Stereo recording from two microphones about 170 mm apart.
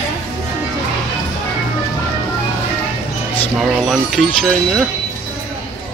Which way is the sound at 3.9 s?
Centre (ahead or behind).